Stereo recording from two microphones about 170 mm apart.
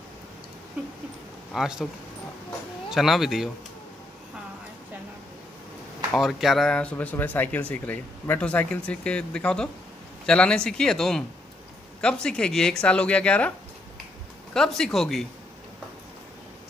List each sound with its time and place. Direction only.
1.5 s speech: centre (ahead or behind)
2.9 s speech: centre (ahead or behind)
6.1 s speech: centre (ahead or behind)
14.5 s speech: 5° left (ahead or behind)